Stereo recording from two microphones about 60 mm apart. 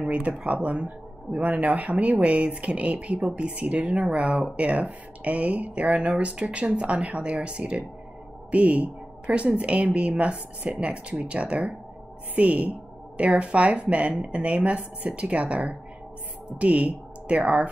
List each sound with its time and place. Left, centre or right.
0.0 s speech: right